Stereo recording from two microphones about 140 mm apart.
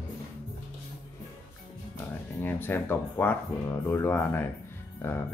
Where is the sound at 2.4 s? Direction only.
15° left (ahead or behind).